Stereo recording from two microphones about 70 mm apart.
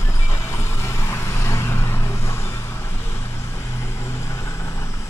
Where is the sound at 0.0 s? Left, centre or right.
Left.